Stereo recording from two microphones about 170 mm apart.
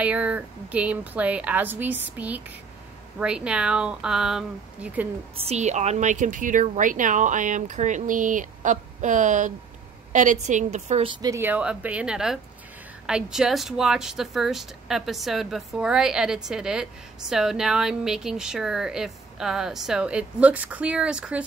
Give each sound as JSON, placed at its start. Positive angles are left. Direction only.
{"t": 0.0, "sound": "a woman's voice", "side_deg": -10}
{"t": 5.3, "sound": "a woman's voice", "side_deg": -35}